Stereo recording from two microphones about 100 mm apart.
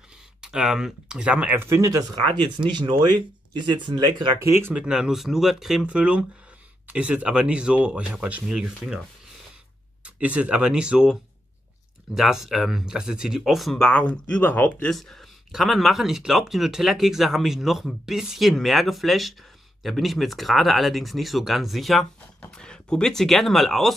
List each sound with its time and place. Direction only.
0.4 s speech: 5° right (ahead or behind); by 4.4 s 50° right (ahead or behind)
4.4 s speech: 25° right (ahead or behind)
4.7 s speech: 10° right (ahead or behind)
10.0 s speech: 15° right (ahead or behind)
13.8 s speech: 15° left (ahead or behind)
14.9 s speech: 5° left (ahead or behind)